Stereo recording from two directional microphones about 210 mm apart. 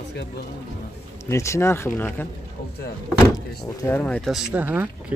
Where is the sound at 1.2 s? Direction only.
15° left (ahead or behind).